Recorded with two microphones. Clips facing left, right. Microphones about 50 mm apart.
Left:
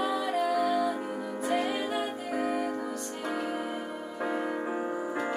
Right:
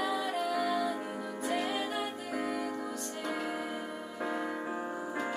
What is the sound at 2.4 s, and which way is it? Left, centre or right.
Music, centre.